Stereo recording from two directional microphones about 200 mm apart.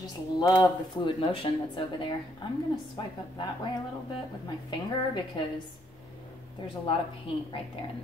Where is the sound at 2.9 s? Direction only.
20° left (ahead or behind).